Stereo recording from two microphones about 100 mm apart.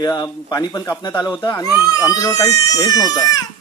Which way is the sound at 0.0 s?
40° left (ahead or behind).